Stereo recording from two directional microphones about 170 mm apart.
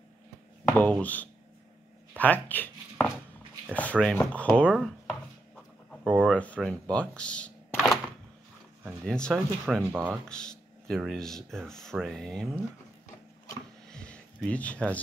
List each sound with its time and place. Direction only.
0.7 s speech: 10° left (ahead or behind)
2.1 s a sound: 10° left (ahead or behind)
4.0 s speech: 5° left (ahead or behind)
6.2 s speech: 10° left (ahead or behind)
9.0 s speech: 5° left (ahead or behind)
13.8 s a sound: 5° left (ahead or behind)